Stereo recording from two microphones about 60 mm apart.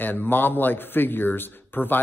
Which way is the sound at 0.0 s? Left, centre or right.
Left.